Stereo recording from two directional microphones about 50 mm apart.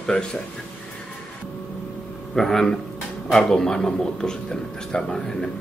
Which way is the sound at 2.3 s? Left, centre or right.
Centre.